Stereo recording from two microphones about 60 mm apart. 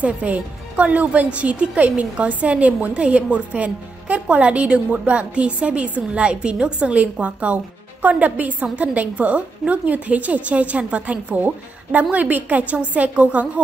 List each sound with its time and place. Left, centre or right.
0.0 s a woman's voice: right